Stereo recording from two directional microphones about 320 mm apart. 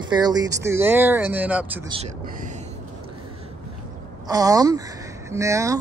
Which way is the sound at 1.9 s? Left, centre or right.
Centre.